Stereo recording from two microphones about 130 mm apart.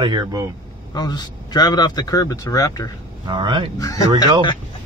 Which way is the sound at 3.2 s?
35° right (ahead or behind).